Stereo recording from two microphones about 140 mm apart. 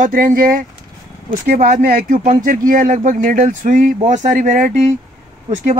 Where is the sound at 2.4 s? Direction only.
75° right (ahead or behind).